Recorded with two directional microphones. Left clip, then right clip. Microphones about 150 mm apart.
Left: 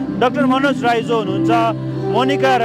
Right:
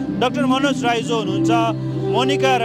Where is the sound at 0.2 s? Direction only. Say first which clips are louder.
Left 3 dB; 15° left (ahead or behind).